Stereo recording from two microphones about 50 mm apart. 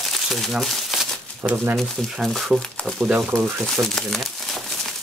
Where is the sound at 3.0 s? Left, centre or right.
Right.